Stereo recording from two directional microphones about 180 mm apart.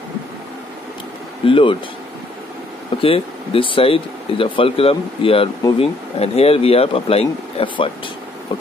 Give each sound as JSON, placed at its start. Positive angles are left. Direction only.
{"t": 1.4, "sound": "speech", "side_deg": 30}
{"t": 3.0, "sound": "speech", "side_deg": 30}